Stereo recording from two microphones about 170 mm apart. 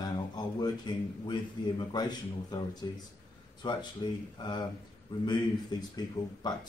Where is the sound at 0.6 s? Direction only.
25° left (ahead or behind).